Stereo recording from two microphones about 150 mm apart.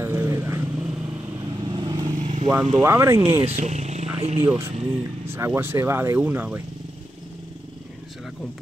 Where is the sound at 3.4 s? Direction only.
45° right (ahead or behind).